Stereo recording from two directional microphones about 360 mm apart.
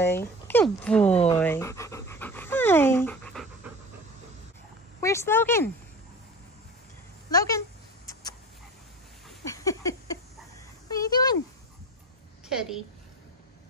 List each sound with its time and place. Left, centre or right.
0.0 s speech: centre
1.1 s speech: centre
1.4 s pant: centre
5.0 s speech: centre
7.2 s speech: centre
9.4 s a sound: centre
12.4 s a woman's voice: centre